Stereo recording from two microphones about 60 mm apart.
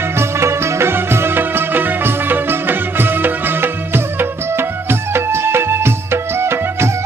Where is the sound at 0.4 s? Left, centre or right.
Right.